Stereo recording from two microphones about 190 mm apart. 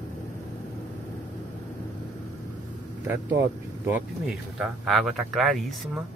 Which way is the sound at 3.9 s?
5° right (ahead or behind).